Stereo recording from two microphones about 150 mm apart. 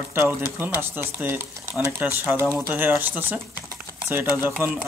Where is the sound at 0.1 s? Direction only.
15° right (ahead or behind).